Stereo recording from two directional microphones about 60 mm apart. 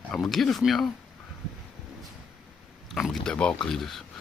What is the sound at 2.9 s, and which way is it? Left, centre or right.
Speech, centre.